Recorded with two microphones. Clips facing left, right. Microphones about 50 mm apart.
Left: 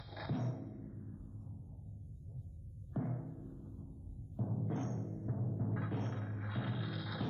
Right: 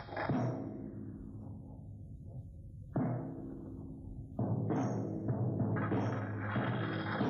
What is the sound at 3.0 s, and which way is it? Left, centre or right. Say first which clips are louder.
Music: right 5 dB; right.